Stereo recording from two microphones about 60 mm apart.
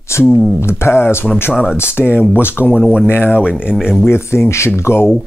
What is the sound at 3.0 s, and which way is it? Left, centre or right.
Speech, left.